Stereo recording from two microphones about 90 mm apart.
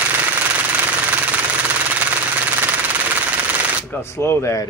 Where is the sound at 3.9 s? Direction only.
30° left (ahead or behind).